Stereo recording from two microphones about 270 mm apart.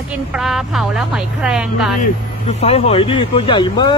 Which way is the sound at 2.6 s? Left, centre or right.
Left.